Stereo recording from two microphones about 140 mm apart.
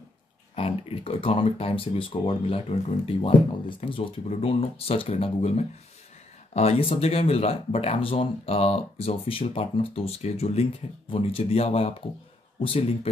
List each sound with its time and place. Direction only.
0.6 s speech: 45° left (ahead or behind)